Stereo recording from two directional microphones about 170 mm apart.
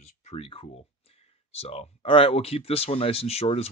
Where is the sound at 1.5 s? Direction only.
35° left (ahead or behind).